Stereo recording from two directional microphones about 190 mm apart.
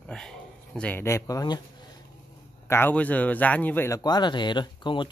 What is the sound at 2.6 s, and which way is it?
Speech, 10° left (ahead or behind).